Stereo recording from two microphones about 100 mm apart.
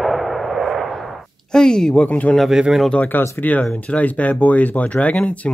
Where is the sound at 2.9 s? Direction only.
15° left (ahead or behind).